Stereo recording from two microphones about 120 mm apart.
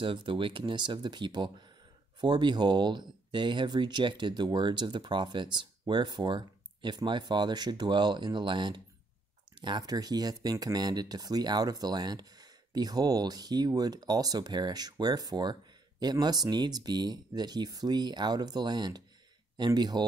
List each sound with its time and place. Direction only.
0.0 s speech: 45° right (ahead or behind)